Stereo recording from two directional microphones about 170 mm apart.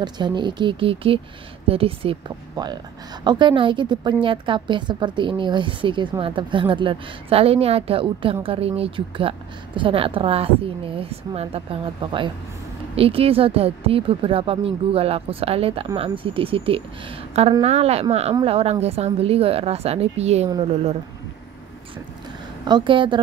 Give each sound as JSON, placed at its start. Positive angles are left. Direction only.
{"t": 0.0, "sound": "a woman's voice", "side_deg": -25}
{"t": 22.7, "sound": "speech", "side_deg": -30}